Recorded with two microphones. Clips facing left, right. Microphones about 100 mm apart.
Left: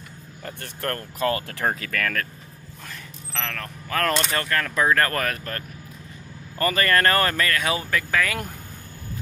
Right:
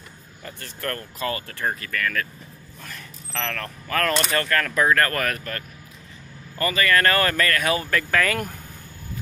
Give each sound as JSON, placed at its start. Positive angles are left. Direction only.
{"t": 0.4, "sound": "speech", "side_deg": 45}
{"t": 1.7, "sound": "speech", "side_deg": 75}
{"t": 3.3, "sound": "speech", "side_deg": 5}
{"t": 4.3, "sound": "speech", "side_deg": 20}
{"t": 6.6, "sound": "speech", "side_deg": 45}
{"t": 7.3, "sound": "speech", "side_deg": 20}
{"t": 8.1, "sound": "speech", "side_deg": 5}